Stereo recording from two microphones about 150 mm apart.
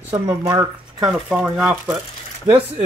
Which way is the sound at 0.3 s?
25° right (ahead or behind).